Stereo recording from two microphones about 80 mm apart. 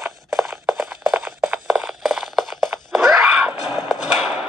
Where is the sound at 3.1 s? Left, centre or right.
Centre.